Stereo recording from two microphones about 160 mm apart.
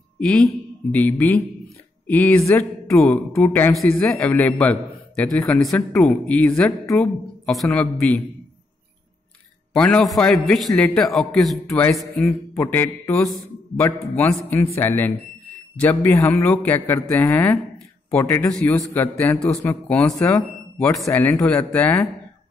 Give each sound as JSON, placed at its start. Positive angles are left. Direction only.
{"t": 0.2, "sound": "a man's voice", "side_deg": 5}
{"t": 3.0, "sound": "a man's voice", "side_deg": 5}
{"t": 9.8, "sound": "a man's voice", "side_deg": 5}